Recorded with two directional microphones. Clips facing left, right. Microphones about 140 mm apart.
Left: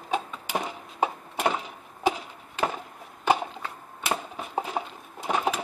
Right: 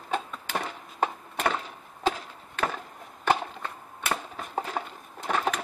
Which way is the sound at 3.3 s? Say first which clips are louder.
Left 2 dB; 10° left (ahead or behind).